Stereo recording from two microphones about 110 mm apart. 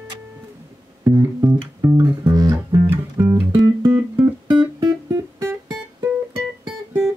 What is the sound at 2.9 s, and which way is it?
Music, 20° right (ahead or behind).